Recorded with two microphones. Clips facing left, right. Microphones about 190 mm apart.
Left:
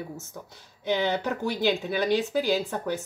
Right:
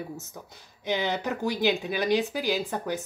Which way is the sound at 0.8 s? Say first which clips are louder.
Left 2 dB; 15° right (ahead or behind).